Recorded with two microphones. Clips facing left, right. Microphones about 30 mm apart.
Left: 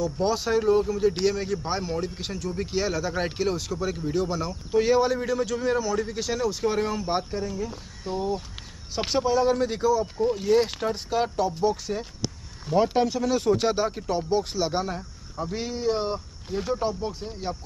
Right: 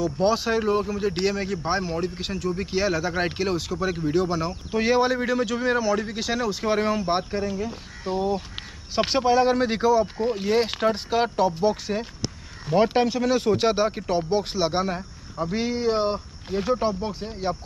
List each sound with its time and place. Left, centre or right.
0.0 s speech: centre; by 10.2 s right
10.2 s speech: right